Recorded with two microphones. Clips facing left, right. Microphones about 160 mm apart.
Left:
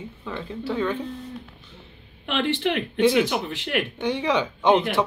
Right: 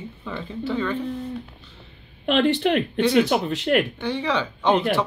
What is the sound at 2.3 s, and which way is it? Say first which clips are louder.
Speech: right 4 dB; 45° right (ahead or behind).